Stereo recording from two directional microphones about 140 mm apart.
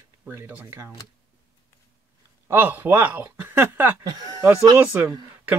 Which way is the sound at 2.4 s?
15° right (ahead or behind).